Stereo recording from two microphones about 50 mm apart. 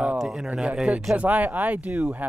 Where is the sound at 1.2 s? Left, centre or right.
Right.